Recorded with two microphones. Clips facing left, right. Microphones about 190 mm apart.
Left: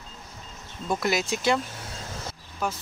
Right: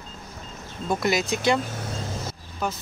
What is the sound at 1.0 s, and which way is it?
Speech, 5° left (ahead or behind).